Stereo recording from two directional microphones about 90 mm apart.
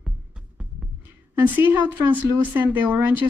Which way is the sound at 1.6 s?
20° right (ahead or behind).